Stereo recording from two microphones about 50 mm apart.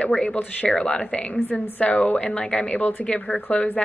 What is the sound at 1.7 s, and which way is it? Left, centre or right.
A woman's voice, left.